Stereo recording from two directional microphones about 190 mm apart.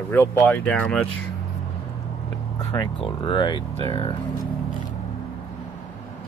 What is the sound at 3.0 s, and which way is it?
Speech, 25° left (ahead or behind).